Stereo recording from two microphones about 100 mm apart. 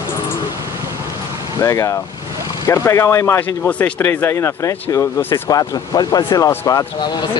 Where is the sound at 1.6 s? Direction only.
30° left (ahead or behind).